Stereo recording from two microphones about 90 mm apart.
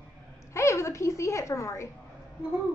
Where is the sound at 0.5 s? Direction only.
30° left (ahead or behind).